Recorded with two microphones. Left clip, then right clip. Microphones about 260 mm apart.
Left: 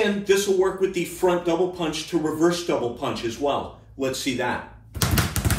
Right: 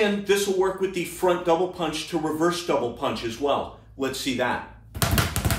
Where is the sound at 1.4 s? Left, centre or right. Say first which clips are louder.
Right 1 dB; centre.